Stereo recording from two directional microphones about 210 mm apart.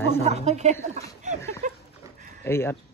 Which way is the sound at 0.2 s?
30° right (ahead or behind).